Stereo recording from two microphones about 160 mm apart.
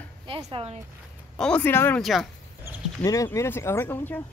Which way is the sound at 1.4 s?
10° left (ahead or behind).